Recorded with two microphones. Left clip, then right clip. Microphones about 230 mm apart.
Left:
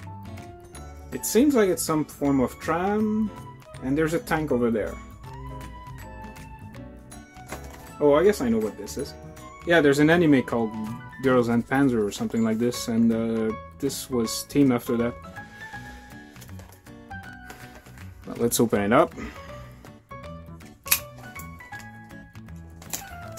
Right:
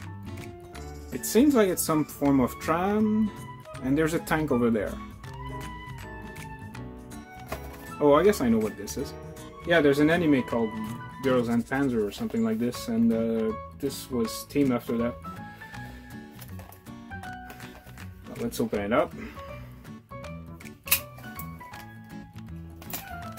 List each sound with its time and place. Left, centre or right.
1.1 s speech: centre
8.0 s speech: centre
9.7 s speech: centre
18.8 s speech: left